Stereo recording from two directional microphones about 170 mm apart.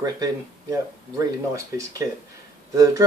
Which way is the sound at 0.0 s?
20° right (ahead or behind).